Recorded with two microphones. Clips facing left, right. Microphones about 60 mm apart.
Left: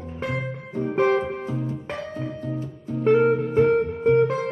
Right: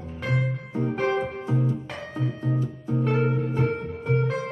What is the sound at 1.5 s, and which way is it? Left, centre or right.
Music, right.